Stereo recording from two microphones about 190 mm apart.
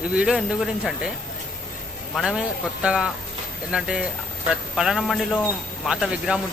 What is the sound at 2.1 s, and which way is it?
Speech, centre (ahead or behind).